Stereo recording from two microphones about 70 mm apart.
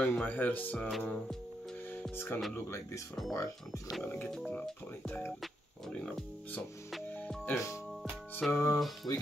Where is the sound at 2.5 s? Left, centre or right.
Left.